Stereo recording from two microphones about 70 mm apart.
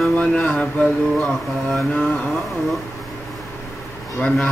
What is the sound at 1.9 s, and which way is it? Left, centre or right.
Mantra, centre.